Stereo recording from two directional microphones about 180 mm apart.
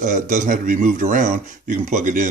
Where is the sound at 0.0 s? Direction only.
45° right (ahead or behind).